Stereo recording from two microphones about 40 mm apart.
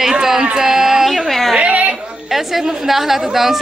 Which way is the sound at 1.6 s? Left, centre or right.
Right.